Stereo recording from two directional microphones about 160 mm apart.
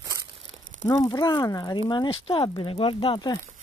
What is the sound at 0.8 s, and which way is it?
Speech, 25° left (ahead or behind).